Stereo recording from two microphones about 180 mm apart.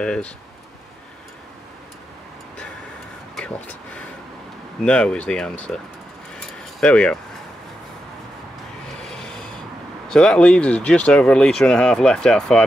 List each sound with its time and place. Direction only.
0.0 s speech: 5° left (ahead or behind)
3.3 s vehicle: 5° left (ahead or behind)
4.8 s speech: 5° left (ahead or behind)
6.8 s speech: 5° left (ahead or behind)
9.0 s rub: 5° left (ahead or behind)
10.1 s speech: 5° left (ahead or behind)